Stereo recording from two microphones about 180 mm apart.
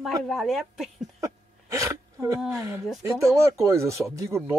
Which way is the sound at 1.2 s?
15° right (ahead or behind).